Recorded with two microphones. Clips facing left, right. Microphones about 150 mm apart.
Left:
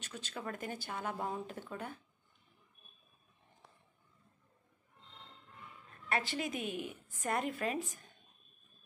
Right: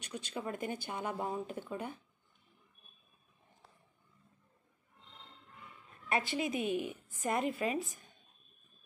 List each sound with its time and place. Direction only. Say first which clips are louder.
0.0 s speech: right 3 dB; 10° right (ahead or behind)
6.0 s a woman's voice: right 2 dB; 10° right (ahead or behind)
6.6 s a woman's voice: right 5 dB; 45° right (ahead or behind)
6.9 s speech: right 2 dB; 10° right (ahead or behind)